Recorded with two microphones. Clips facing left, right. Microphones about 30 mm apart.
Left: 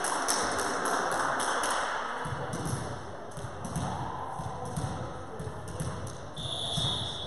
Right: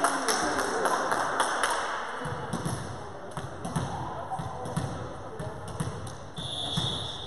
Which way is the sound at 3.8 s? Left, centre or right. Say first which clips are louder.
Even; centre.